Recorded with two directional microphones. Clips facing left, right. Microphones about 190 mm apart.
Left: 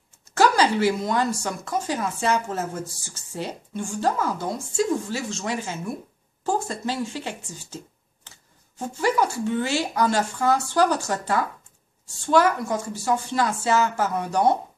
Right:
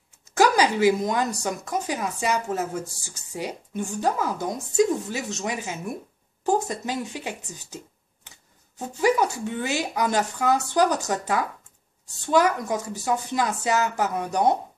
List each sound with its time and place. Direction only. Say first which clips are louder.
0.3 s a woman's voice: even; 15° right (ahead or behind)